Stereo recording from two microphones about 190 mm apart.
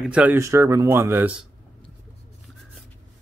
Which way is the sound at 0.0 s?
5° right (ahead or behind).